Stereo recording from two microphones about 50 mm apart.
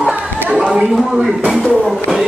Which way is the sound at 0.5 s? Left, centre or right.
Centre.